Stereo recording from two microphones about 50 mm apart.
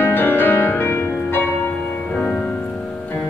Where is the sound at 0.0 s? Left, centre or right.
Left.